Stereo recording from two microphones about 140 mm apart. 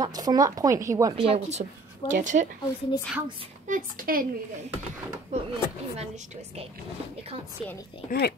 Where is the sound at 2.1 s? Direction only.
65° right (ahead or behind).